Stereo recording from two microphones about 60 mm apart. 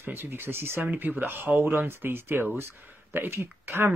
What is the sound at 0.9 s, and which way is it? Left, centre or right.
Speech, right.